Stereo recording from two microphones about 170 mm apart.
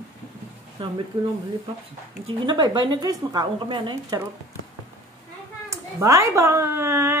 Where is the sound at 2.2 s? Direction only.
25° right (ahead or behind).